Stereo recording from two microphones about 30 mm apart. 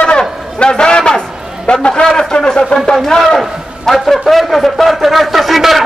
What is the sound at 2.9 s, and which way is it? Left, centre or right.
A man's voice, centre.